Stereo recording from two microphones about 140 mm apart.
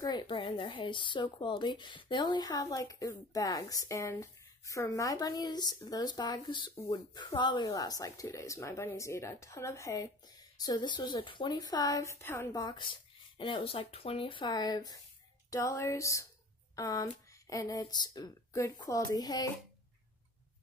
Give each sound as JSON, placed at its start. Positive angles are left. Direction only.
{"t": 0.0, "sound": "speech", "side_deg": 30}
{"t": 12.6, "sound": "speech", "side_deg": 35}